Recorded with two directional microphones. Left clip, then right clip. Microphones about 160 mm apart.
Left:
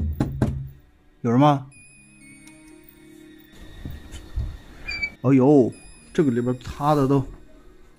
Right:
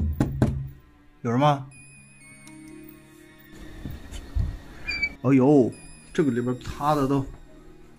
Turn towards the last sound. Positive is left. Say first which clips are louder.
# left 3 dB
turn(degrees=45)  # may be behind; listen again after turning